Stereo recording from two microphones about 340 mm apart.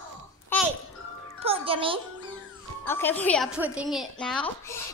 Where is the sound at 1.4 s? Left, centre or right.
Centre.